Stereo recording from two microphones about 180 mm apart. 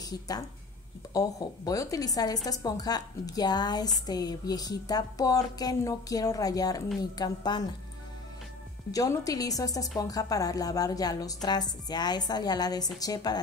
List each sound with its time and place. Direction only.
1.1 s speech: 20° left (ahead or behind)
8.9 s speech: 20° left (ahead or behind)